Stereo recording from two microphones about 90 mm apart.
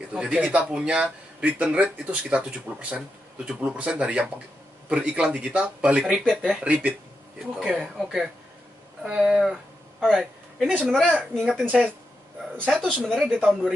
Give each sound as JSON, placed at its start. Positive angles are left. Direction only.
{"t": 0.1, "sound": "speech", "side_deg": -10}
{"t": 7.5, "sound": "a man's voice", "side_deg": 0}
{"t": 11.6, "sound": "speech", "side_deg": -15}
{"t": 12.8, "sound": "speech", "side_deg": -5}
{"t": 13.4, "sound": "speech", "side_deg": -20}